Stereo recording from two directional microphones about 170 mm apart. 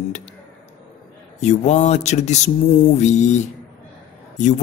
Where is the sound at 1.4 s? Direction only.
45° left (ahead or behind).